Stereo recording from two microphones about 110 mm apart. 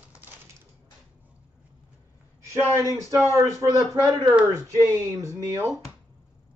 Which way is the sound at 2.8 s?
30° right (ahead or behind).